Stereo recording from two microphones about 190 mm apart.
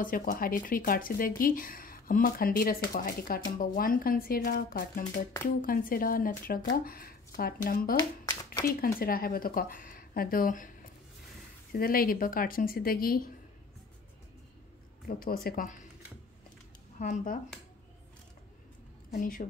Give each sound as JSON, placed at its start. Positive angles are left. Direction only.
{"t": 0.0, "sound": "speech", "side_deg": 45}
{"t": 15.0, "sound": "speech", "side_deg": 50}
{"t": 17.0, "sound": "speech", "side_deg": 40}
{"t": 19.0, "sound": "a woman's voice", "side_deg": 45}